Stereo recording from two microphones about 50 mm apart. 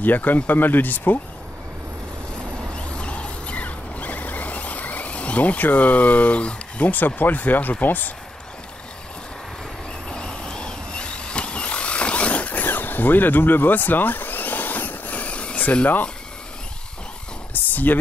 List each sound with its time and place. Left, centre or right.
0.0 s speech: left
2.7 s vehicle: left
7.8 s speech: left
10.0 s vehicle: centre
12.6 s vehicle: left
17.6 s a sound: left